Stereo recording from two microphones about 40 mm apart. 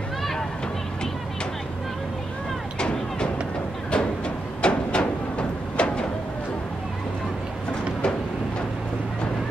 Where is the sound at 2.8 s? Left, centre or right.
Left.